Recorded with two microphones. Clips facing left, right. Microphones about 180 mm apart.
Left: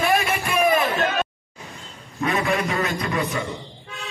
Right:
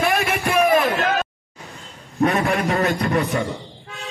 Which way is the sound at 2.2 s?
45° right (ahead or behind).